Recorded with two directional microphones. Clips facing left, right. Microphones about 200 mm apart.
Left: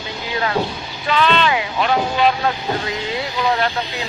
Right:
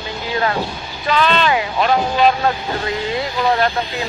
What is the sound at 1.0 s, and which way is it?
Speech, 40° right (ahead or behind).